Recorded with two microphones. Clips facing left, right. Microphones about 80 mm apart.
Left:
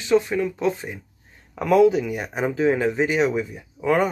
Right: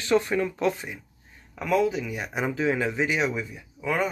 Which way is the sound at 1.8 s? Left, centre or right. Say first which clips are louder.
Left 8 dB; left.